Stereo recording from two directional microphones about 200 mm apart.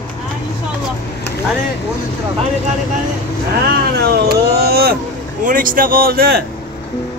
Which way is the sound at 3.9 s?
50° right (ahead or behind).